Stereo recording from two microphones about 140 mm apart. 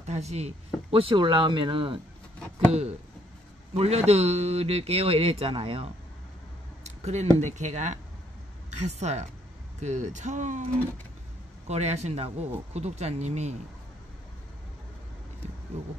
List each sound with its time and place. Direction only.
0.0 s speech: 55° right (ahead or behind); by 2.0 s 35° right (ahead or behind)
3.7 s speech: 50° right (ahead or behind)
6.8 s a woman's voice: 55° right (ahead or behind)
11.6 s speech: 50° right (ahead or behind)